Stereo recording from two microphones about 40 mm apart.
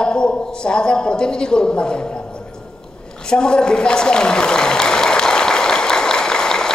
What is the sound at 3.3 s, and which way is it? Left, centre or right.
Applause, centre.